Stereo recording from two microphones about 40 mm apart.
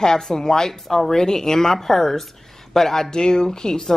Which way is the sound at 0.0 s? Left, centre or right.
Centre.